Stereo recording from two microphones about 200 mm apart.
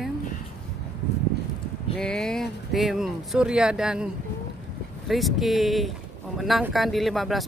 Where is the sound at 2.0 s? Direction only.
5° left (ahead or behind).